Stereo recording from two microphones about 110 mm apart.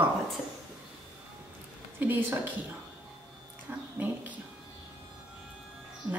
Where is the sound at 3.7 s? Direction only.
15° right (ahead or behind).